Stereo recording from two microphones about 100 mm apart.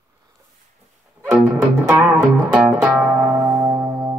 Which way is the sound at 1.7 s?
15° right (ahead or behind).